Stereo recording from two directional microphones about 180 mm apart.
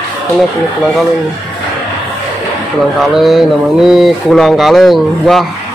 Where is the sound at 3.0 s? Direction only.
Centre (ahead or behind).